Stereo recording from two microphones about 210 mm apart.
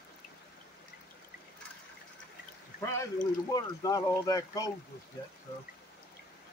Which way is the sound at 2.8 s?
15° left (ahead or behind).